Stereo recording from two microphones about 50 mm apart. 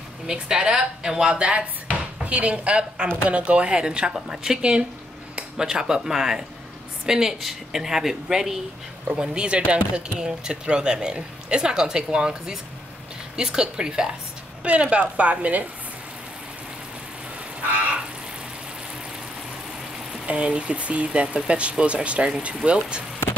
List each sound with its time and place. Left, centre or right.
0.3 s a woman's voice: centre
9.3 s a woman's voice: right
17.6 s a sound: right
20.2 s speech: right